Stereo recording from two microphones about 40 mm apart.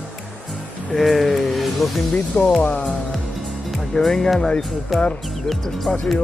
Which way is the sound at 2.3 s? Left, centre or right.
Left.